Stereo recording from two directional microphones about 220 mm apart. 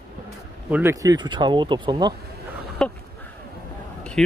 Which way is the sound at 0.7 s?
10° right (ahead or behind).